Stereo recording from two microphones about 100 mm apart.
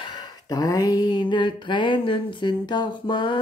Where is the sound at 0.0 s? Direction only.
45° left (ahead or behind).